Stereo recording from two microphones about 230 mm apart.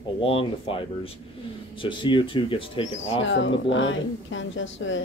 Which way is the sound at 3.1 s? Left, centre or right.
Left.